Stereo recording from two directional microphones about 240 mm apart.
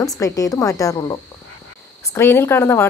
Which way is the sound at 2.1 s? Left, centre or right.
Centre.